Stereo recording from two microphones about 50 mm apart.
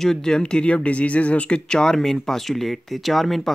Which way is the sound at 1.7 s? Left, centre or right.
Centre.